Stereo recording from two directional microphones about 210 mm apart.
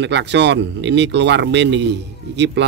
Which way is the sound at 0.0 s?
55° right (ahead or behind).